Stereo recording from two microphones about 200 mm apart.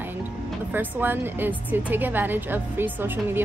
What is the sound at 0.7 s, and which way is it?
A woman's voice, 10° right (ahead or behind).